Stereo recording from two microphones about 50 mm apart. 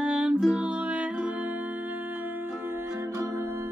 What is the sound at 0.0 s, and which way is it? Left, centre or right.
Music, centre.